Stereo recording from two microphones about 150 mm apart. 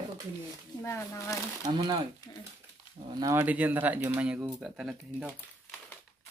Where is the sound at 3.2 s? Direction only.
15° right (ahead or behind).